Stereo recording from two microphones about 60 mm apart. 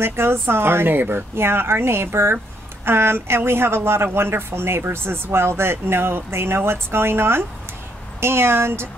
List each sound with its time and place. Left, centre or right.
0.0 s speech: right